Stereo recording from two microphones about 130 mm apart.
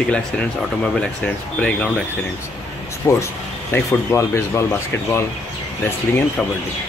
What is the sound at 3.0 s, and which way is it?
Speech, 25° left (ahead or behind).